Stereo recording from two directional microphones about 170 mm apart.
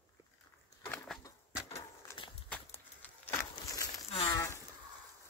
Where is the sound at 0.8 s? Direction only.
5° left (ahead or behind).